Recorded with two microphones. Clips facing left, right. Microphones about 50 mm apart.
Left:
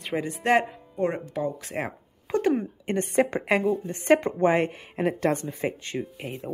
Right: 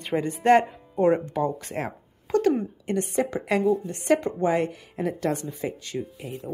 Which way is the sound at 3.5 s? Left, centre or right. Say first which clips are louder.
Right 1 dB; left.